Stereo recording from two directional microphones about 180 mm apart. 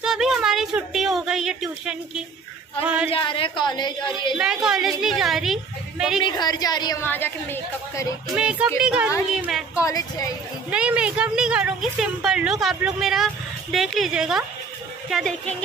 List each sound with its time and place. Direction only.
0.0 s a sound: 5° right (ahead or behind)
2.8 s a woman's voice: 5° right (ahead or behind)
3.1 s a woman's voice: 30° left (ahead or behind)
4.4 s a woman's voice: 5° right (ahead or behind)
6.2 s a woman's voice: 25° left (ahead or behind)
7.1 s a woman's voice: 10° left (ahead or behind)
8.4 s a woman's voice: 5° right (ahead or behind)
9.8 s a woman's voice: 20° left (ahead or behind)
10.7 s a woman's voice: 5° right (ahead or behind)